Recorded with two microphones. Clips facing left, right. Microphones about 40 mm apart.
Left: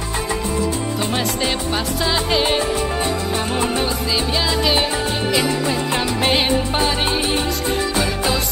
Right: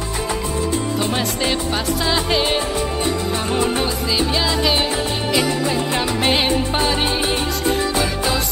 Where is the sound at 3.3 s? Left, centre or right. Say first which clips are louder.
Right 1 dB; left.